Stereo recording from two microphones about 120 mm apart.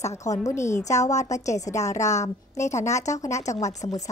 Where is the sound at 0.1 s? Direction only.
25° left (ahead or behind).